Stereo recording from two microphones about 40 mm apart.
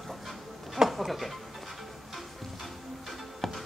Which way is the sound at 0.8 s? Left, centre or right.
Centre.